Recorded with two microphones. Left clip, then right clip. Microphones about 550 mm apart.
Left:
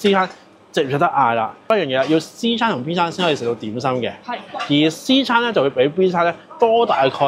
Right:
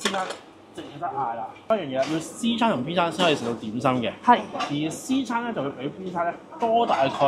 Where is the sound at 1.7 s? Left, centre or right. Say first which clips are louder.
Left 6 dB; left.